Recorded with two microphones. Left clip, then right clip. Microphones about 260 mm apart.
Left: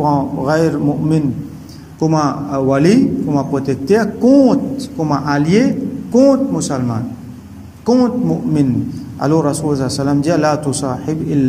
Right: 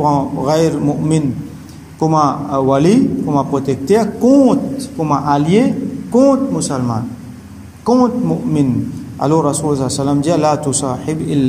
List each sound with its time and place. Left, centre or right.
0.5 s a man's voice: centre